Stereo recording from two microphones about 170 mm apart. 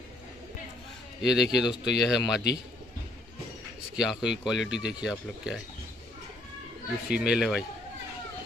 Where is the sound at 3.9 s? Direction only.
5° right (ahead or behind).